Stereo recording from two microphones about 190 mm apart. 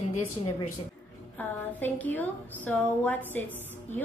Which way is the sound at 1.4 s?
10° left (ahead or behind).